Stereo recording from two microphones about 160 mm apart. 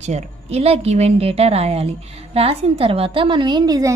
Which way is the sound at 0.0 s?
45° right (ahead or behind).